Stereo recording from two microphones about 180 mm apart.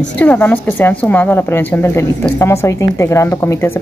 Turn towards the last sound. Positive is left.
turn(degrees=15)  # may be behind; listen again after turning